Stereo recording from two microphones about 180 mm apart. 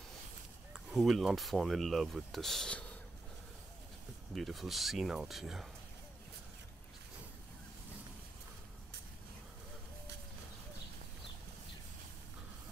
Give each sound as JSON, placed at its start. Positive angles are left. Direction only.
{"t": 0.7, "sound": "speech", "side_deg": 0}
{"t": 4.4, "sound": "speech", "side_deg": 0}